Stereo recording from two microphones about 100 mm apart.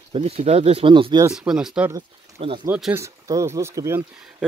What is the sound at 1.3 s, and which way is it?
Speech, 5° right (ahead or behind).